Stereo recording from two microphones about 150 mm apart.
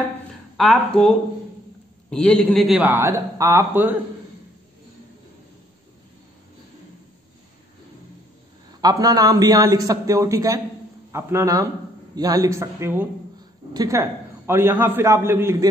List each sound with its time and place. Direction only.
0.6 s a man's voice: 5° left (ahead or behind)
2.8 s a man's voice: 15° right (ahead or behind)
8.8 s a man's voice: 25° right (ahead or behind)